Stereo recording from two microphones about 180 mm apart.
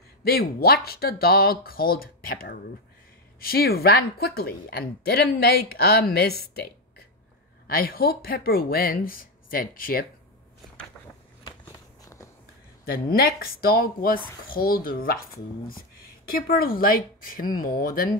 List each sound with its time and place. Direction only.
0.2 s a woman's voice: 60° left (ahead or behind)
11.4 s walk: 20° left (ahead or behind)
12.8 s a woman's voice: 55° left (ahead or behind)
16.3 s a woman's voice: 55° left (ahead or behind)